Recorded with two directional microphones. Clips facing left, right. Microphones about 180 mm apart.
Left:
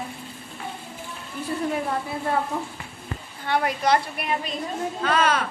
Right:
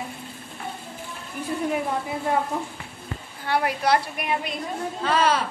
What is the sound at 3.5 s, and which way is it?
A woman's voice, 10° right (ahead or behind).